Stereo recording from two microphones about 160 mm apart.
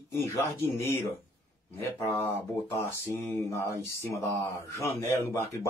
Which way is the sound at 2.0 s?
15° left (ahead or behind).